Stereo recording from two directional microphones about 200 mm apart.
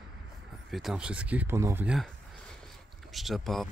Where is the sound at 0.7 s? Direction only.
Centre (ahead or behind).